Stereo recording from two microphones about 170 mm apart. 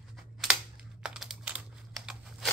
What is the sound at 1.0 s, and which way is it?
Computer keyboard, 5° right (ahead or behind).